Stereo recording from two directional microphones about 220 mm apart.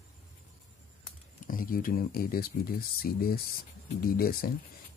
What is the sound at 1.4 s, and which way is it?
Speech, 40° left (ahead or behind).